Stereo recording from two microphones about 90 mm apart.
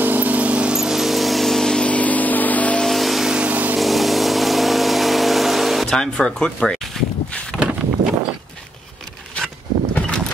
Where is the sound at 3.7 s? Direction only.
Centre (ahead or behind).